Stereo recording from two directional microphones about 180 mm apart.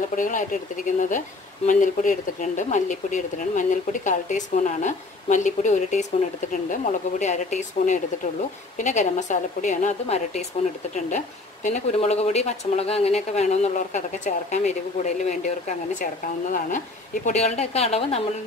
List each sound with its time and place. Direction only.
0.1 s speech: 45° left (ahead or behind)